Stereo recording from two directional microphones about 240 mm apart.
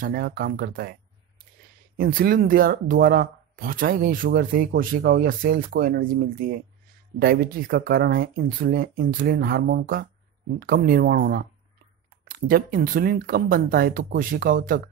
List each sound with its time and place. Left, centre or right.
0.0 s speech: right
2.0 s speech: right